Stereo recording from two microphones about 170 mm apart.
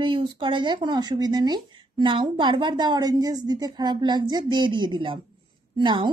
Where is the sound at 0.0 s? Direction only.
30° right (ahead or behind).